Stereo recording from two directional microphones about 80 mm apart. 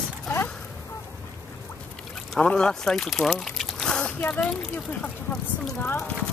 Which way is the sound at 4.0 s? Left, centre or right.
Left.